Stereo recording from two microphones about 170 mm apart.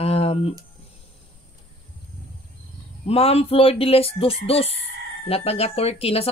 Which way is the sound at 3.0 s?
35° left (ahead or behind).